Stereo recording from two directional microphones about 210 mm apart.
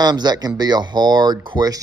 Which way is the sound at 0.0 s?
20° right (ahead or behind).